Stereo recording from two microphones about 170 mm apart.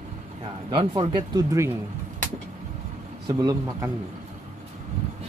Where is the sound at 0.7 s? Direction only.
30° right (ahead or behind).